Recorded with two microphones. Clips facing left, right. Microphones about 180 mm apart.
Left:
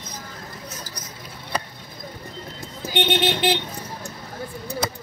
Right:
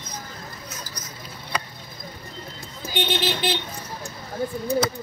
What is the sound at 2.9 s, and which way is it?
Vehicle, 65° left (ahead or behind).